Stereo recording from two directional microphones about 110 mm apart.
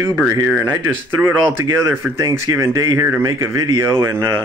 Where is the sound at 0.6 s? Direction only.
25° right (ahead or behind).